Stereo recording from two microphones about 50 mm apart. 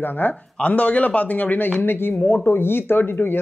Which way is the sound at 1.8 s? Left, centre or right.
Left.